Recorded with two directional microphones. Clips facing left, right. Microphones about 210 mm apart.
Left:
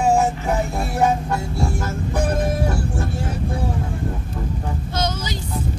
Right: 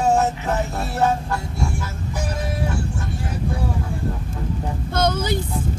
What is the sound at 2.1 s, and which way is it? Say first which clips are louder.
Vehicle: left 6 dB; 55° left (ahead or behind).